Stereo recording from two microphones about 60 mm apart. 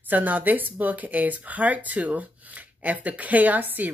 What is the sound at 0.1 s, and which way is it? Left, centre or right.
A woman's voice, right.